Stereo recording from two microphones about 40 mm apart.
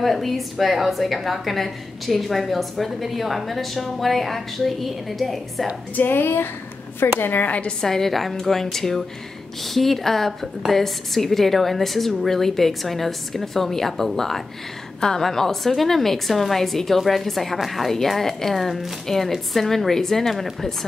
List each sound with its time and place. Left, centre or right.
0.0 s a woman's voice: centre
5.9 s a woman's voice: left
7.0 s a woman's voice: left
7.8 s a woman's voice: centre